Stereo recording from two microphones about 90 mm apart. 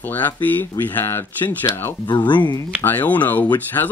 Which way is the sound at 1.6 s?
55° left (ahead or behind).